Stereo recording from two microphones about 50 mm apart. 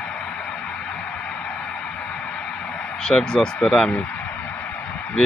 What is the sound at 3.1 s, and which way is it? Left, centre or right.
Speech, centre.